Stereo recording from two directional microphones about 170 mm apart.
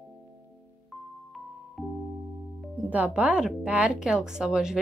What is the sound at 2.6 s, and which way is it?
Speech, 5° right (ahead or behind).